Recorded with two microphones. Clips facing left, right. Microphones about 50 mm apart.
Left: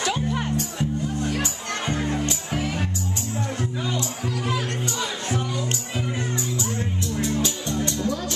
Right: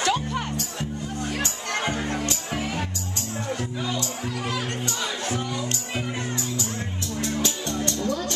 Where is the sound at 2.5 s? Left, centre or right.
Centre.